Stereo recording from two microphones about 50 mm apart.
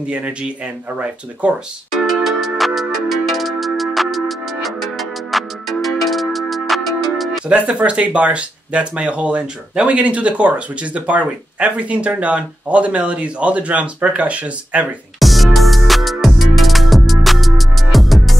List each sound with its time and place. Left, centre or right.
0.0 s speech: right
1.9 s speech: centre
2.2 s music: centre
7.4 s speech: right
15.1 s music: centre